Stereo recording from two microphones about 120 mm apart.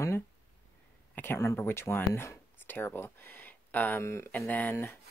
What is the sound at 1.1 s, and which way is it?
Speech, 20° left (ahead or behind).